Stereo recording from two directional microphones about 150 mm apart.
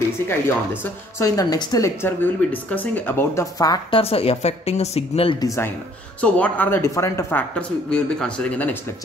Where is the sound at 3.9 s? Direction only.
40° left (ahead or behind).